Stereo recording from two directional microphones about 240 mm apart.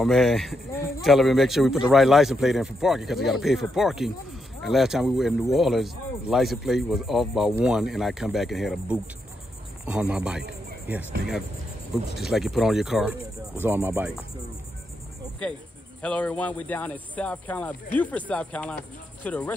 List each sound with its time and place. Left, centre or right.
0.0 s speech: centre
16.0 s speech: centre